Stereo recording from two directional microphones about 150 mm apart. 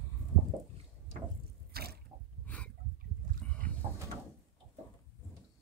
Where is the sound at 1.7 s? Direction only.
90° right.